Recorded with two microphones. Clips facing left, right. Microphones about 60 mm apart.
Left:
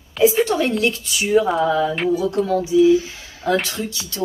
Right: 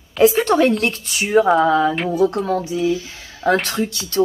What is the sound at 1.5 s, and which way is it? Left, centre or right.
Speech, right.